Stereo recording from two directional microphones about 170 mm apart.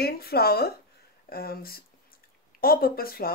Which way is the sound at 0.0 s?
65° left (ahead or behind).